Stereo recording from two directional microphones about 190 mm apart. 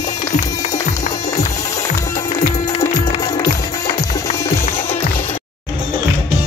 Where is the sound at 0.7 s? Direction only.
15° left (ahead or behind).